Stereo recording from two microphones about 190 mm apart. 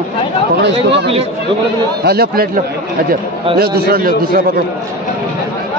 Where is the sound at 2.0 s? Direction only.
55° right (ahead or behind).